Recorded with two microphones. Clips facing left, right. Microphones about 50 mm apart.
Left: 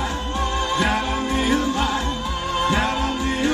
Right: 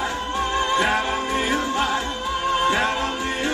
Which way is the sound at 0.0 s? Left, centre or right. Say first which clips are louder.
Right 1 dB; right.